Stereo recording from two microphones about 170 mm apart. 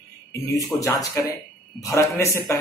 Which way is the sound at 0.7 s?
20° left (ahead or behind).